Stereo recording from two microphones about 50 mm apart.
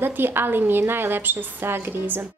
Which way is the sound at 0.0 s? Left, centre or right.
Right.